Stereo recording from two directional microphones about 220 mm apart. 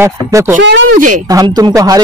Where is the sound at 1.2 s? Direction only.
15° right (ahead or behind).